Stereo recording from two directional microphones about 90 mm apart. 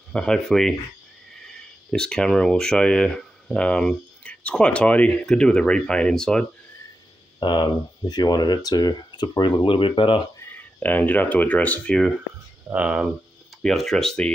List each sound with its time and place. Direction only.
0.1 s speech: 10° left (ahead or behind)
7.3 s speech: 55° left (ahead or behind)
9.6 s speech: 75° left (ahead or behind)
10.4 s speech: 20° left (ahead or behind)
12.7 s speech: 10° right (ahead or behind)
13.6 s speech: 5° left (ahead or behind)